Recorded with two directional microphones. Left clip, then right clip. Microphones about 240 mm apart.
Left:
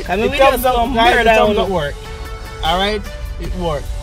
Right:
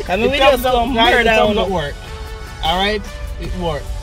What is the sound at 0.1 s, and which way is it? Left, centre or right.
A man's voice, centre.